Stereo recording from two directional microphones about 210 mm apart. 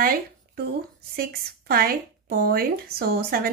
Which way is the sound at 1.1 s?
45° right (ahead or behind).